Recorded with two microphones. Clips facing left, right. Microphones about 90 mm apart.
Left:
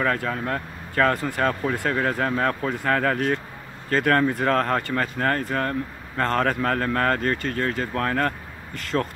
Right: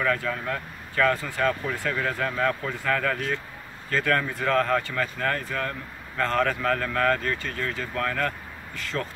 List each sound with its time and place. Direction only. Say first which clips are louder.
0.0 s speech: left 2 dB; 40° left (ahead or behind)